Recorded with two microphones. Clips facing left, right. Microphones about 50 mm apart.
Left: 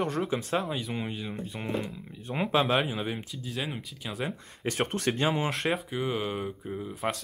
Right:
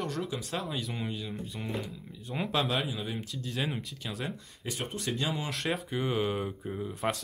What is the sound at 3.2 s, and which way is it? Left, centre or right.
Speech, centre.